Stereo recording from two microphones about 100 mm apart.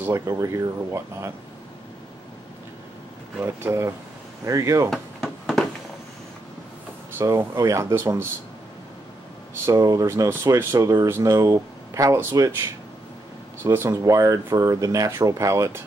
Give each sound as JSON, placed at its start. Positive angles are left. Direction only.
{"t": 0.0, "sound": "speech", "side_deg": -30}
{"t": 3.6, "sound": "speech", "side_deg": -30}
{"t": 4.9, "sound": "a sound", "side_deg": 0}
{"t": 7.2, "sound": "speech", "side_deg": -25}
{"t": 9.7, "sound": "speech", "side_deg": -35}